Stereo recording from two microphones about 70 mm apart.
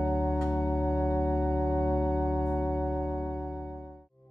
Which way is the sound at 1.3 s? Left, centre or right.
Centre.